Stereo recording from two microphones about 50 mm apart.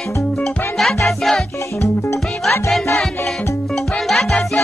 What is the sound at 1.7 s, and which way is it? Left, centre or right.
Music, left.